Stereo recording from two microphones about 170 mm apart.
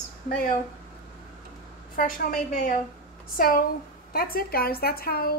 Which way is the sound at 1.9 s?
55° left (ahead or behind).